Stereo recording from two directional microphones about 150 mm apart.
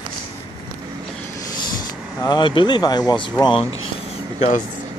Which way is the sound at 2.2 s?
30° left (ahead or behind).